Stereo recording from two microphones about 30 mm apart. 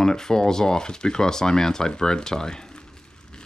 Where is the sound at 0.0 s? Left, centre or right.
Left.